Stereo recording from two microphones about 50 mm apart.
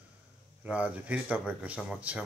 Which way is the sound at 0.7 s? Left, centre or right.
Right.